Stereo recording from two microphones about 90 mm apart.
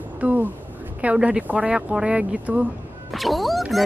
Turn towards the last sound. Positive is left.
turn(degrees=0)  # may be behind; listen again after turning